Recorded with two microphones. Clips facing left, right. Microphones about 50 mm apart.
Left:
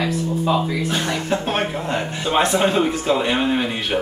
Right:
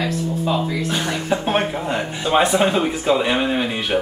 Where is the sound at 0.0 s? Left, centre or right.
Centre.